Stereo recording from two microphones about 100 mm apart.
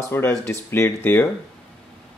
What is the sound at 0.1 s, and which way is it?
Speech, 25° left (ahead or behind).